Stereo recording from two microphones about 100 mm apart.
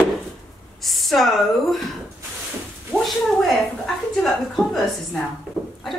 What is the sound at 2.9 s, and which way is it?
A woman's voice, centre (ahead or behind).